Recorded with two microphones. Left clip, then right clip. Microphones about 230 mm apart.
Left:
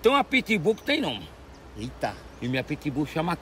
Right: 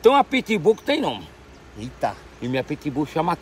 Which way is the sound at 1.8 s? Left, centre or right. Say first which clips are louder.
Right 5 dB; centre.